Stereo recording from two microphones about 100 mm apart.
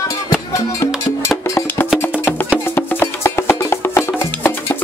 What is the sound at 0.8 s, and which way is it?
Music, 30° left (ahead or behind).